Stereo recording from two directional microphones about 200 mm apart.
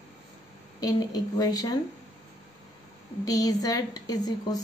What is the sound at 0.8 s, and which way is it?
A woman's voice, 20° left (ahead or behind).